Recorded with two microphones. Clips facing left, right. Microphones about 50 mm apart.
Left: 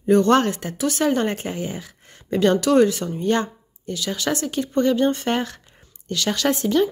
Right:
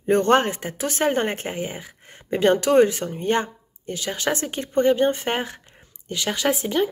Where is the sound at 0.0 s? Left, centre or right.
Right.